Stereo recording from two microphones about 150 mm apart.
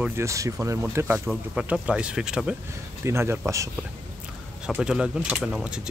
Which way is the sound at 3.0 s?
15° right (ahead or behind).